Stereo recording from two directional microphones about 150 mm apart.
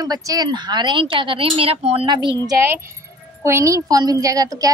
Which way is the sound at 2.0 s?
30° right (ahead or behind).